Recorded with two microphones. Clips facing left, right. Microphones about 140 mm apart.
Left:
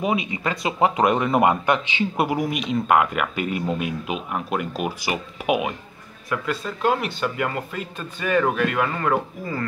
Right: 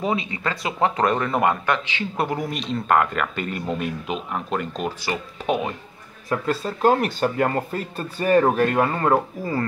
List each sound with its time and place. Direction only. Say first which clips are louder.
0.0 s a man's voice: left 1 dB; 15° left (ahead or behind)
6.2 s speech: right 3 dB; 35° right (ahead or behind)